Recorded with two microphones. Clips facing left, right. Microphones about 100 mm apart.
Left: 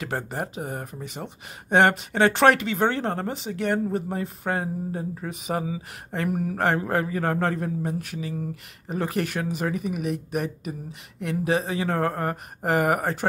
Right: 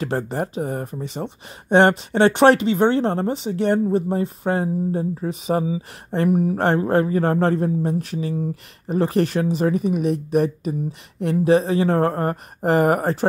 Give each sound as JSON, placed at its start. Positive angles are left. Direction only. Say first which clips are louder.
{"t": 0.0, "sound": "speech", "louder": "right 6 dB", "side_deg": -35}